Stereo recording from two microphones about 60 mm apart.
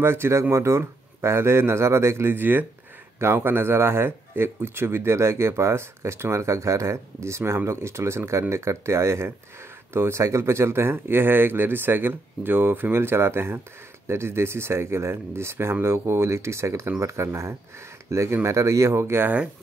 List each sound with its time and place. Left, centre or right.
0.0 s speech: right